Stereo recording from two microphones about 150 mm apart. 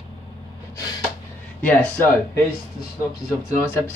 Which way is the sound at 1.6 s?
10° left (ahead or behind).